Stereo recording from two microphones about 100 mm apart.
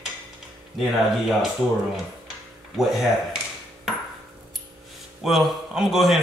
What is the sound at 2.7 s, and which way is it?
Speech, centre (ahead or behind).